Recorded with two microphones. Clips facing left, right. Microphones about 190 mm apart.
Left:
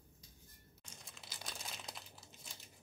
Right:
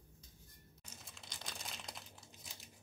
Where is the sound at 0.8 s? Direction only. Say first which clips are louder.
Even; 5° right (ahead or behind).